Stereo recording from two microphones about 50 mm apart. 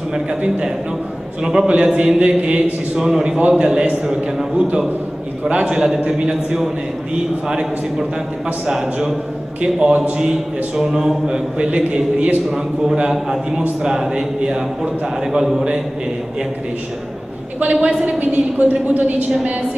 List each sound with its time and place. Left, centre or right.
0.1 s a man's voice: centre
3.1 s a man's voice: centre
9.6 s a man's voice: centre
12.4 s a man's voice: centre
17.7 s a man's voice: centre
18.0 s a woman's voice: right